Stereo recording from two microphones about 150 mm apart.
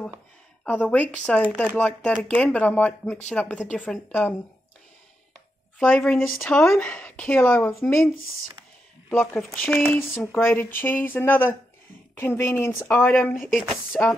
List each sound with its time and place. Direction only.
0.7 s speech: 10° left (ahead or behind)
5.8 s speech: 5° left (ahead or behind)
9.1 s speech: 10° left (ahead or behind)
13.4 s speech: centre (ahead or behind)